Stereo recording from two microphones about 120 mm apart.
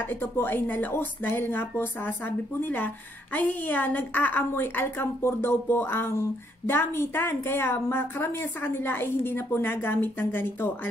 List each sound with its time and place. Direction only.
0.0 s a woman's voice: 15° left (ahead or behind)